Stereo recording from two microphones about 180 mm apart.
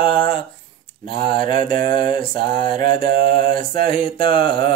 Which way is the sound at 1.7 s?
50° right (ahead or behind).